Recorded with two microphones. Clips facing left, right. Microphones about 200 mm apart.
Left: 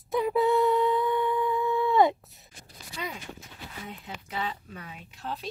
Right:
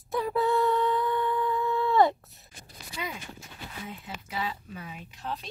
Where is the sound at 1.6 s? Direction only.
20° left (ahead or behind).